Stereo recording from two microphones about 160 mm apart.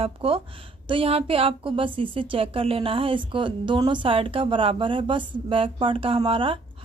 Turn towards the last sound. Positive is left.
turn(degrees=-35)  # may be behind; listen again after turning